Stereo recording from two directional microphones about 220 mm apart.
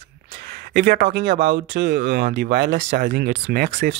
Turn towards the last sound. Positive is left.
turn(degrees=-45)  # may be behind; listen again after turning